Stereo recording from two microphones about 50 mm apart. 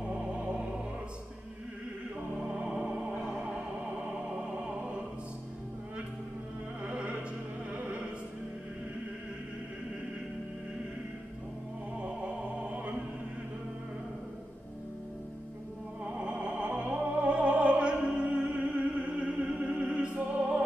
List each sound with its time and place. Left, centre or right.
0.0 s music: right
2.4 s music: centre
4.3 s music: right
6.8 s music: right
12.0 s music: right
16.0 s opera: right
19.3 s music: centre